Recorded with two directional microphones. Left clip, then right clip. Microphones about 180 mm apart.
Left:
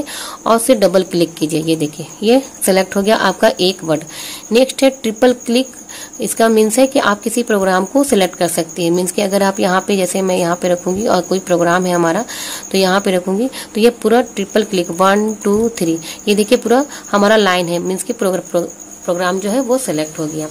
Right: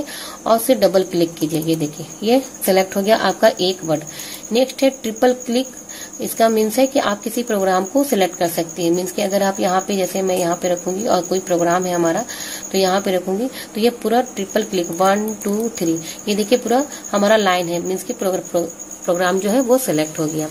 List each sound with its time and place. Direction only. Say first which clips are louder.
0.4 s speech: left 3 dB; 30° left (ahead or behind)
19.0 s speech: left 1 dB; 10° left (ahead or behind)